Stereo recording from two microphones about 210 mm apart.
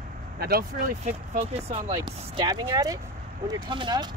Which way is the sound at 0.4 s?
45° right (ahead or behind).